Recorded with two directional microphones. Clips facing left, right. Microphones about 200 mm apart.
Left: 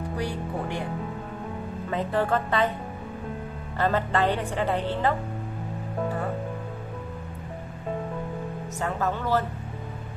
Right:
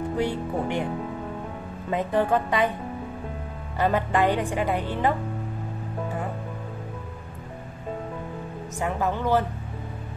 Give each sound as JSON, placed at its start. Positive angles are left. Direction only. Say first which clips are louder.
{"t": 0.2, "sound": "speech", "louder": "right 4 dB", "side_deg": -20}
{"t": 1.9, "sound": "a woman's voice", "louder": "right 2 dB", "side_deg": -15}
{"t": 3.7, "sound": "a woman's voice", "louder": "right 2 dB", "side_deg": -15}
{"t": 8.7, "sound": "a woman's voice", "louder": "right 2 dB", "side_deg": -15}